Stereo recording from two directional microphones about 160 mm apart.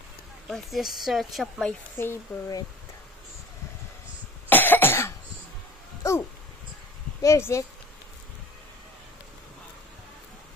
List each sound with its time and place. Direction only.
0.5 s speech: centre (ahead or behind)
2.0 s speech: 15° left (ahead or behind)
4.5 s cough: 10° left (ahead or behind)
7.2 s speech: 15° left (ahead or behind)